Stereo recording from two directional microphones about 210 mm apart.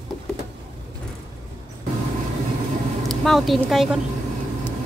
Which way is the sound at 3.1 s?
Centre (ahead or behind).